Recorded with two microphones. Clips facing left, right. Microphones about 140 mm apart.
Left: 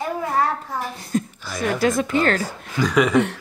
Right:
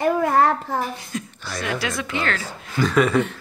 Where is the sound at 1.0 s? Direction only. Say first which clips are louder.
Left 7 dB; 40° left (ahead or behind).